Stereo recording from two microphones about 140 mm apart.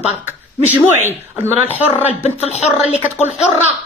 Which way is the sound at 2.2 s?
55° left (ahead or behind).